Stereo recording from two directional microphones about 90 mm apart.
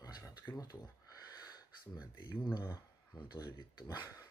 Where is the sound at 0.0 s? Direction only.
45° left (ahead or behind).